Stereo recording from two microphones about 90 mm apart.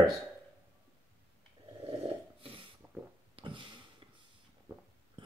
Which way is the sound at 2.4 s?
90° right.